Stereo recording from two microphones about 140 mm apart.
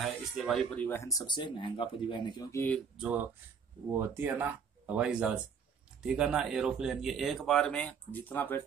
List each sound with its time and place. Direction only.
0.0 s a sound: centre (ahead or behind)
0.7 s speech: 15° left (ahead or behind)
3.0 s speech: 10° right (ahead or behind); by 8.6 s 15° left (ahead or behind)